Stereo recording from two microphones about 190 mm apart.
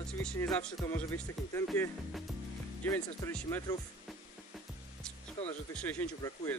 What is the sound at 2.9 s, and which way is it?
Speech, 15° left (ahead or behind).